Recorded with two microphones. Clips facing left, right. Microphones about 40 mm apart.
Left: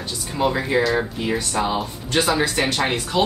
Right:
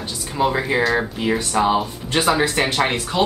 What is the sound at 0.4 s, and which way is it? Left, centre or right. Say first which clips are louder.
Speech: right 1 dB; centre.